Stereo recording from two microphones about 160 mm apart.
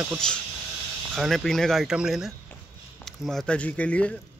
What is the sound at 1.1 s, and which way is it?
Speech, centre (ahead or behind).